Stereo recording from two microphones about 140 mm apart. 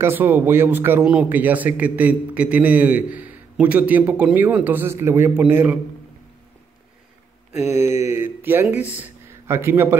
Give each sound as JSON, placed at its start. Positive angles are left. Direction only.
{"t": 0.0, "sound": "speech", "side_deg": -15}
{"t": 7.9, "sound": "speech", "side_deg": -20}